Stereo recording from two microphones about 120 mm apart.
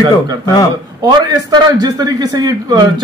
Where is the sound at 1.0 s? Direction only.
35° right (ahead or behind).